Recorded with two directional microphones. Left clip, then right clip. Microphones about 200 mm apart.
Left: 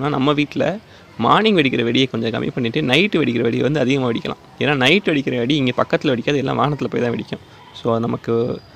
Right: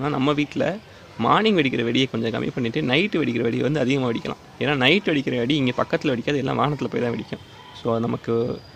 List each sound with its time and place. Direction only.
0.0 s speech: 20° left (ahead or behind)